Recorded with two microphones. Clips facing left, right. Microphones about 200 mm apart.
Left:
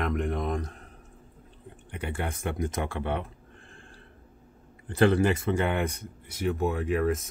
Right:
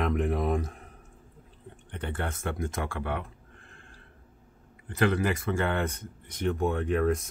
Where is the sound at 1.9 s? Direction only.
10° left (ahead or behind).